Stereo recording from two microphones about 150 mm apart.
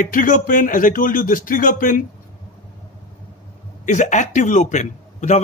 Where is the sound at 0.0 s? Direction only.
65° left (ahead or behind).